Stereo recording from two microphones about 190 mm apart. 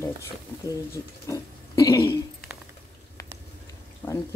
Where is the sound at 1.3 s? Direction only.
15° left (ahead or behind).